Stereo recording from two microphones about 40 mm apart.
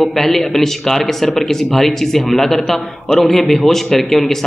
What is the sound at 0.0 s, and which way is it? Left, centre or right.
A man's voice, centre.